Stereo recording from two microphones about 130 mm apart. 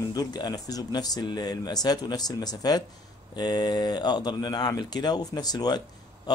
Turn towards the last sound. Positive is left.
turn(degrees=30)  # may be behind; listen again after turning